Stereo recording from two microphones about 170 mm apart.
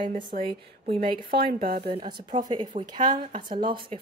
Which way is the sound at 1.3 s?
60° right (ahead or behind).